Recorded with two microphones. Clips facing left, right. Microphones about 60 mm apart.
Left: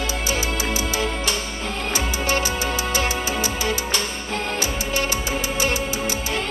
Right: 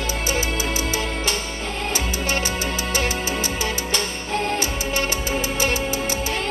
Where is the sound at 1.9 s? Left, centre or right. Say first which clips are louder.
Left 3 dB; left.